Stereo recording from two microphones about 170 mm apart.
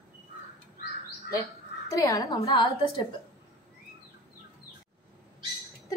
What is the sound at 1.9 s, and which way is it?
Speech, 20° left (ahead or behind).